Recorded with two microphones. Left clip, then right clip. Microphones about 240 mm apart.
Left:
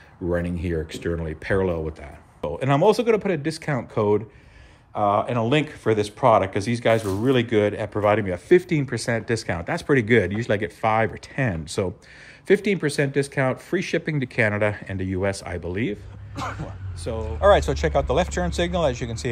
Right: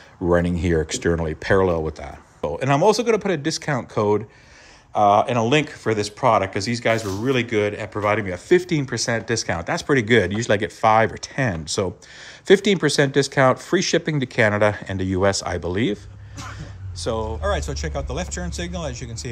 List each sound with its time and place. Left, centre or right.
0.3 s speech: right
17.0 s speech: right
17.4 s speech: centre